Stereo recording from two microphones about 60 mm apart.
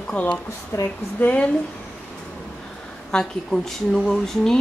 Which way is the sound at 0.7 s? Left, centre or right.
Left.